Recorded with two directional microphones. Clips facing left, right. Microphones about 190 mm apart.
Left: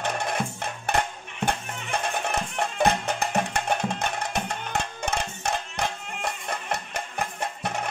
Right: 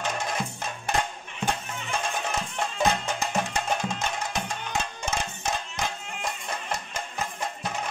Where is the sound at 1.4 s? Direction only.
60° left (ahead or behind).